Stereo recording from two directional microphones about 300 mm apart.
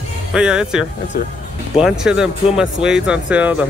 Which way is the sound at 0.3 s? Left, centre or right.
Centre.